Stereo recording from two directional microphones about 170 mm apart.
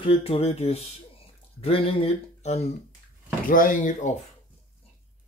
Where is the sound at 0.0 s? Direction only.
35° left (ahead or behind).